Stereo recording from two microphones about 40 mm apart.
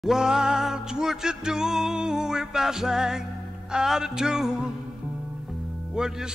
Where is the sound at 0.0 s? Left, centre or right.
Centre.